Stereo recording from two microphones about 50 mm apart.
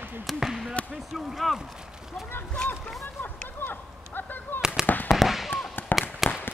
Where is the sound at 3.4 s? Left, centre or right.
Left.